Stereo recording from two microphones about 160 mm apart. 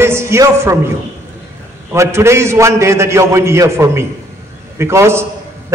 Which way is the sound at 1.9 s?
15° right (ahead or behind).